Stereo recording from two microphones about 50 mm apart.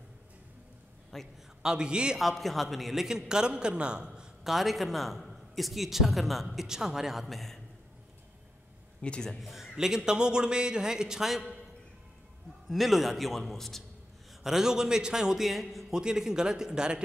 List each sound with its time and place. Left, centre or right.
1.1 s a man's voice: centre
1.6 s a man's voice: centre
2.1 s a man's voice: centre
4.5 s a man's voice: centre
9.0 s a man's voice: centre
9.4 s a man's voice: centre
12.6 s a man's voice: centre
14.4 s a man's voice: centre
15.9 s a man's voice: centre